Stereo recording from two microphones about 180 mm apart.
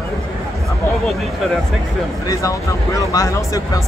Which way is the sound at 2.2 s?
20° left (ahead or behind).